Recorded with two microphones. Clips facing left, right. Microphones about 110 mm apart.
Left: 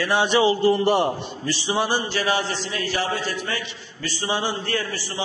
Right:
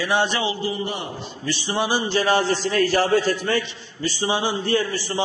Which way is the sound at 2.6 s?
45° right (ahead or behind).